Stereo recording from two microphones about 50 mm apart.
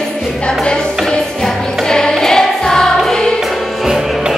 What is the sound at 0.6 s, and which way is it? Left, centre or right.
Music, centre.